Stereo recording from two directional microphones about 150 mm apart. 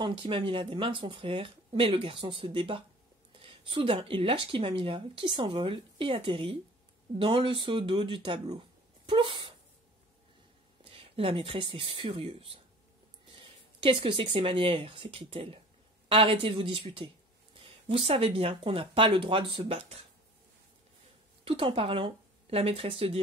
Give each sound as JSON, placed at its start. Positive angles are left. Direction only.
{"t": 0.0, "sound": "speech", "side_deg": -35}
{"t": 10.8, "sound": "speech", "side_deg": -40}
{"t": 21.5, "sound": "speech", "side_deg": -40}